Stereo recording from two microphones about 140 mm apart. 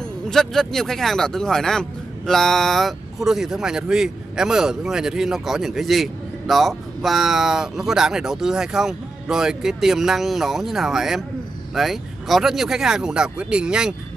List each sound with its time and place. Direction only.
0.3 s speech: centre (ahead or behind)